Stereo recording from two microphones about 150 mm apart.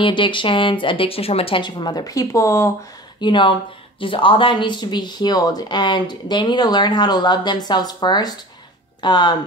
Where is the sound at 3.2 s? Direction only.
30° left (ahead or behind).